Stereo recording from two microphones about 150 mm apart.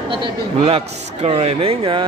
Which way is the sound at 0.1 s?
35° right (ahead or behind).